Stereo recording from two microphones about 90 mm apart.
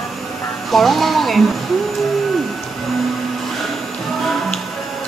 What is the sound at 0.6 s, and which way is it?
Speech, centre (ahead or behind).